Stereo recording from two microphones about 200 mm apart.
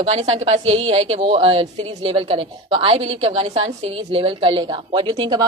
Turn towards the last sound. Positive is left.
turn(degrees=-25)  # may be behind; listen again after turning